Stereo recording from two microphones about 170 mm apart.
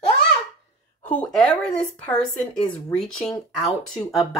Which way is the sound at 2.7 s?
5° left (ahead or behind).